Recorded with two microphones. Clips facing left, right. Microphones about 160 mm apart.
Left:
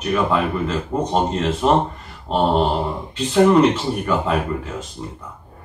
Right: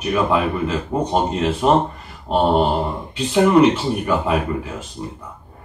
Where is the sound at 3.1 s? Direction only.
10° right (ahead or behind).